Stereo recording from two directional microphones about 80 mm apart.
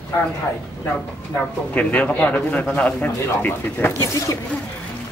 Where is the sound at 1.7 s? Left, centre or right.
Centre.